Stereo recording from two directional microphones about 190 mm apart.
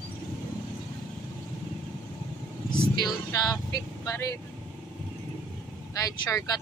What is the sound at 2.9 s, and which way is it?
Speech, 20° left (ahead or behind).